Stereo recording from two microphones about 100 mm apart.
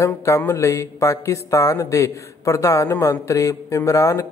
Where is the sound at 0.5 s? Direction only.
30° left (ahead or behind).